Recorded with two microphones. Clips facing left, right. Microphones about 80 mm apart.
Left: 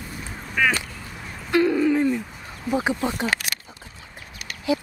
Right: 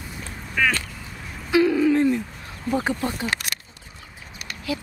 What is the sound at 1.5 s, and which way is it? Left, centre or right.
Owl, centre.